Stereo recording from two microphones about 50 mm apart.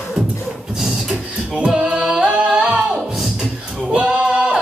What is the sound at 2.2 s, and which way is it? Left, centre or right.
Singing, right.